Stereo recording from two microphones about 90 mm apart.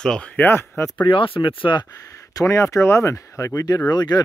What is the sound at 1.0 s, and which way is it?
Speech, 80° left.